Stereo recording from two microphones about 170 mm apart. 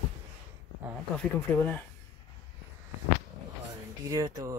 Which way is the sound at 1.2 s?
10° left (ahead or behind).